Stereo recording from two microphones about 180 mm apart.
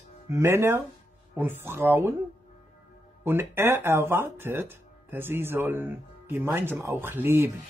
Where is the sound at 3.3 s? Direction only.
15° right (ahead or behind).